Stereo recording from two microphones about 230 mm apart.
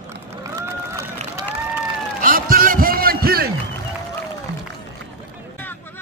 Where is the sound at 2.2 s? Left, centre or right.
Right.